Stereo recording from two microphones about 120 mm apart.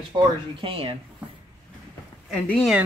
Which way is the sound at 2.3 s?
10° left (ahead or behind).